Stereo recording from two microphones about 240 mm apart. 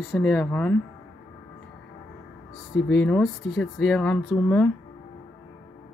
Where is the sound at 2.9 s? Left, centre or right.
Centre.